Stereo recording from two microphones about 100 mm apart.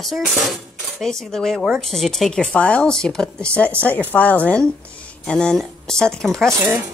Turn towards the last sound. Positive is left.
turn(degrees=-20)  # may be behind; listen again after turning